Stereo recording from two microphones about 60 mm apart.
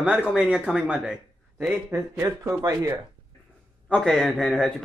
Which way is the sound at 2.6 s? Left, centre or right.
Right.